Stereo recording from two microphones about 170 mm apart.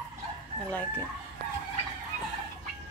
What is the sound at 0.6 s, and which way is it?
Speech, 10° left (ahead or behind).